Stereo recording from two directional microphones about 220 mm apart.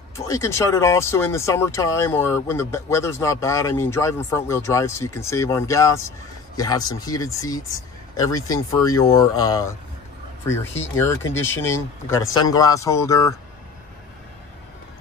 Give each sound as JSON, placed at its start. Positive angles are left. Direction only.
{"t": 0.3, "sound": "speech", "side_deg": 15}